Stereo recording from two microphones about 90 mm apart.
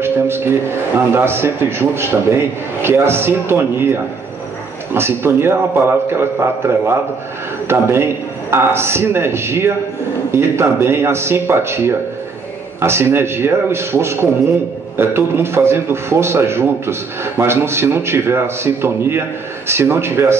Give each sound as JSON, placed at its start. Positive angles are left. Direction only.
{"t": 0.0, "sound": "a man's voice", "side_deg": -25}